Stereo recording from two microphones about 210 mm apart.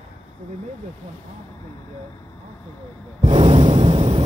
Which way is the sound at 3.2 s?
30° right (ahead or behind).